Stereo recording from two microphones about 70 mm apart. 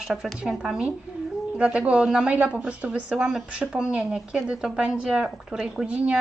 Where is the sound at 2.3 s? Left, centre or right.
Right.